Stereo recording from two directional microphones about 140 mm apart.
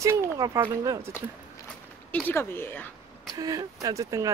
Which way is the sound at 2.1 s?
15° left (ahead or behind).